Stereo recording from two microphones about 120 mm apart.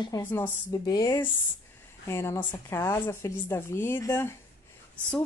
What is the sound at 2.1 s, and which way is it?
Speech, 20° left (ahead or behind).